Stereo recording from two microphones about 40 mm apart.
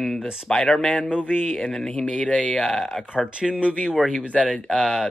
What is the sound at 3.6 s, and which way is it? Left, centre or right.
Speech, left.